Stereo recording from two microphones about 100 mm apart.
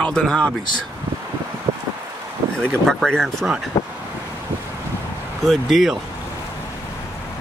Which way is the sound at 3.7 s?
35° left (ahead or behind).